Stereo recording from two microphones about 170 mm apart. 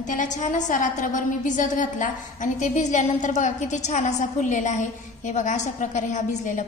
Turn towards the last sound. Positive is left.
turn(degrees=45)  # may be behind; listen again after turning